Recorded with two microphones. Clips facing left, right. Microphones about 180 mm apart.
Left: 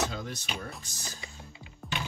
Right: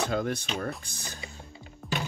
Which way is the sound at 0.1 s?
55° right (ahead or behind).